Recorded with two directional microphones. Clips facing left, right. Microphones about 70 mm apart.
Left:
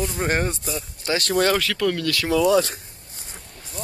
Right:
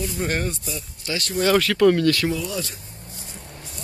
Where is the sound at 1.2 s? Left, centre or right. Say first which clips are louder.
Left 3 dB; left.